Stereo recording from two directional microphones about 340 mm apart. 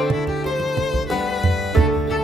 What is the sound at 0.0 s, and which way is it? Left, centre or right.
Music, centre.